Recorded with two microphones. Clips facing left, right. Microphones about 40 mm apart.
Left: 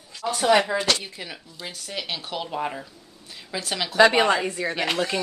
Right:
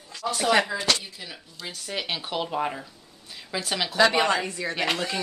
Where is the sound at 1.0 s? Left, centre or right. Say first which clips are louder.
Left 3 dB; left.